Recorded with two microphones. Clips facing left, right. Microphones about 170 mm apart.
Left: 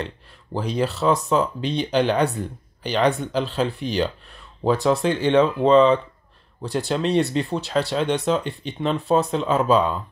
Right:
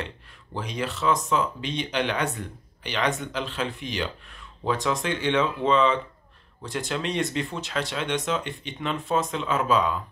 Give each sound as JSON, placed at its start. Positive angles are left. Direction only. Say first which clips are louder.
{"t": 0.0, "sound": "speech", "louder": "left 4 dB", "side_deg": 35}